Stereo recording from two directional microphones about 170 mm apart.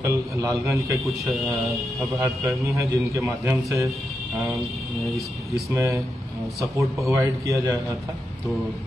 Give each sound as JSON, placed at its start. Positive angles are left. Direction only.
{"t": 0.0, "sound": "a man's voice", "side_deg": -15}
{"t": 1.3, "sound": "speech", "side_deg": 0}
{"t": 2.1, "sound": "a man's voice", "side_deg": -15}
{"t": 5.5, "sound": "a man's voice", "side_deg": -15}
{"t": 7.1, "sound": "a man's voice", "side_deg": -20}